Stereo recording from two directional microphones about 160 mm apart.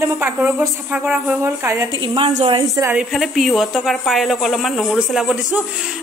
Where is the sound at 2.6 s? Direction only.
20° right (ahead or behind).